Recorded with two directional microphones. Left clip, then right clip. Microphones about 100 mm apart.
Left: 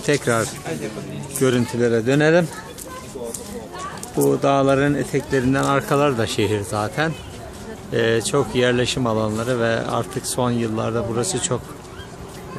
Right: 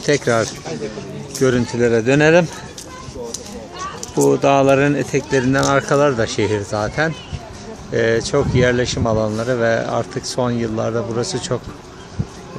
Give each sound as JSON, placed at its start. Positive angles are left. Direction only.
{"t": 0.0, "sound": "speech", "side_deg": -10}
{"t": 1.4, "sound": "speech", "side_deg": -10}
{"t": 1.8, "sound": "speech", "side_deg": -25}
{"t": 4.2, "sound": "speech", "side_deg": -15}